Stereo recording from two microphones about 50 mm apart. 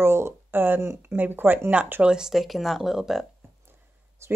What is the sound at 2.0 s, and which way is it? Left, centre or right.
Speech, centre.